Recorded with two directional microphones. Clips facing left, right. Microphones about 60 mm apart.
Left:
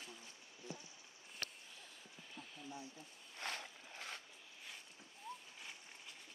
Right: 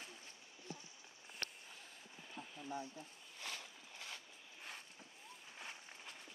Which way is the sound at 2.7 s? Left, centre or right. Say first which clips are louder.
Right 7 dB; right.